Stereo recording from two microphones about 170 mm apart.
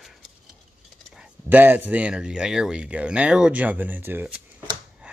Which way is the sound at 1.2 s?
10° right (ahead or behind).